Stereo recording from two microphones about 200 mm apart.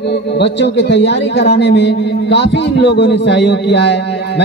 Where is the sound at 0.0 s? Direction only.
60° left (ahead or behind).